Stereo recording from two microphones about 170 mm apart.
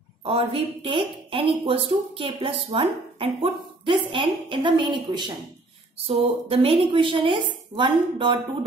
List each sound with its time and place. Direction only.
0.2 s a woman's voice: 35° right (ahead or behind)